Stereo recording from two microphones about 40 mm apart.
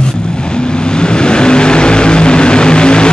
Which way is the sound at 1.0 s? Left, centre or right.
Left.